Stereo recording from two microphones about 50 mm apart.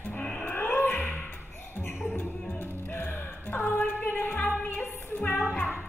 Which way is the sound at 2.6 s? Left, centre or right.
Left.